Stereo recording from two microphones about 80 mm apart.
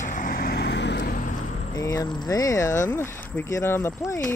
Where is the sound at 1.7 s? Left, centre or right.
Left.